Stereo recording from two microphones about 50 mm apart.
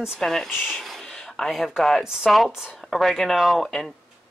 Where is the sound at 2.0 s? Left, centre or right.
Centre.